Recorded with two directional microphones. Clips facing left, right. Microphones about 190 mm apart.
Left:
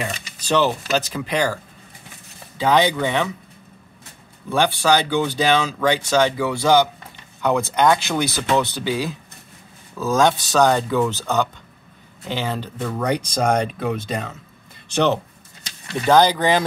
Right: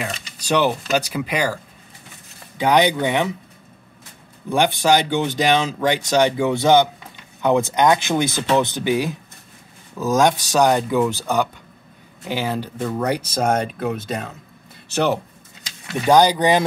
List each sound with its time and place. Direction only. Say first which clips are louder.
0.4 s speech: even; 10° right (ahead or behind)
4.5 s speech: right 1 dB; 15° right (ahead or behind)